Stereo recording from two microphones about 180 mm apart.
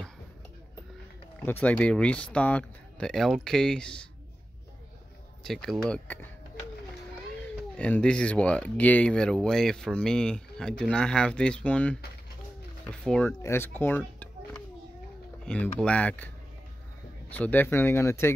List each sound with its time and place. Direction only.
1.4 s speech: 10° left (ahead or behind)
5.4 s speech: centre (ahead or behind)
7.7 s speech: 5° left (ahead or behind)
13.0 s speech: 5° left (ahead or behind)
17.3 s speech: 10° left (ahead or behind)